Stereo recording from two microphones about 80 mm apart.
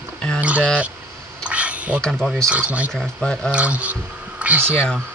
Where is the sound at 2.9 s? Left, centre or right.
Centre.